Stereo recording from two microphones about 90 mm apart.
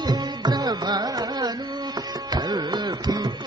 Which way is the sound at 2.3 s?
50° right (ahead or behind).